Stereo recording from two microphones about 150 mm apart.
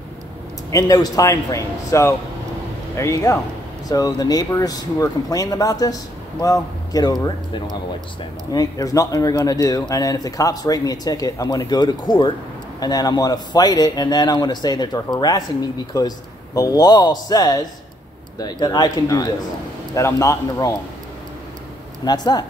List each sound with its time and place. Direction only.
0.7 s speech: 20° left (ahead or behind)
22.0 s speech: 25° left (ahead or behind)